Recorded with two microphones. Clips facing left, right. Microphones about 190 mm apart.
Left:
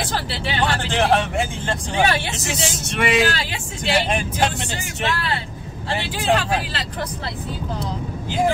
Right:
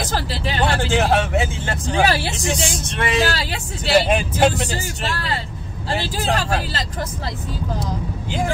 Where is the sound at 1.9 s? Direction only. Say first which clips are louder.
Right 2 dB; 35° right (ahead or behind).